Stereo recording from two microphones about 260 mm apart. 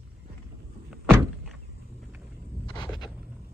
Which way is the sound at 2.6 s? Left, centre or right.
Centre.